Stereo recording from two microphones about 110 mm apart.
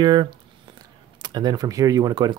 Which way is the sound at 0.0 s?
40° right (ahead or behind).